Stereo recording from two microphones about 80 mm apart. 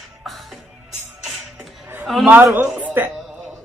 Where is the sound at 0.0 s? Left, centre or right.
Centre.